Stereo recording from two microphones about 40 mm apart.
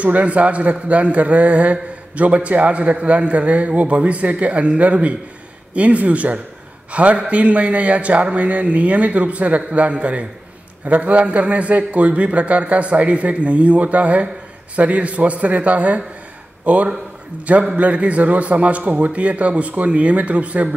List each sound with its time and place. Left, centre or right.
0.0 s a man's voice: right